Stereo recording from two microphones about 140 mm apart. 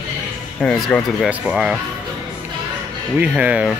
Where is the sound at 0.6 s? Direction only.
5° left (ahead or behind).